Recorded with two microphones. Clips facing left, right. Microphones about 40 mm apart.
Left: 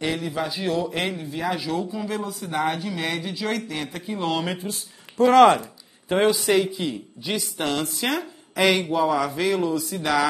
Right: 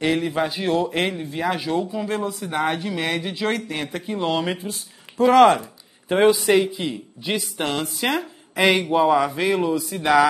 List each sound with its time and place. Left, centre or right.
0.0 s speech: right
1.9 s speech: centre
2.1 s speech: right
3.2 s a man's voice: right